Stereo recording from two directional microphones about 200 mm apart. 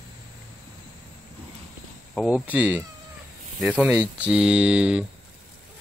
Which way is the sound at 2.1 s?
5° right (ahead or behind).